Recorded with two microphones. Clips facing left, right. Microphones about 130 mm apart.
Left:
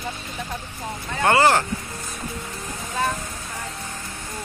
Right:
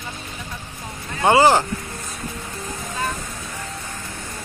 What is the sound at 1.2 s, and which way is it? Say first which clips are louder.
Speech: right 3 dB; 15° right (ahead or behind).